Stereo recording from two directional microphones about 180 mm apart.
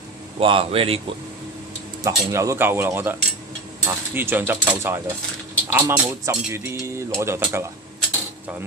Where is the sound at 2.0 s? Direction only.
15° right (ahead or behind).